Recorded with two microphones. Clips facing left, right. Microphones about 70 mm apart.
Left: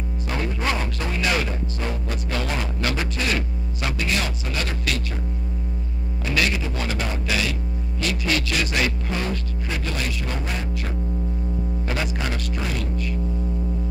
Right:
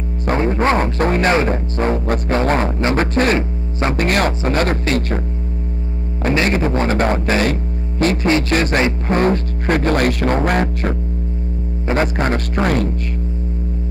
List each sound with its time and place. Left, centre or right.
0.4 s music: right
2.8 s a sound: right
3.9 s speech: right
6.3 s speech: right
11.9 s speech: right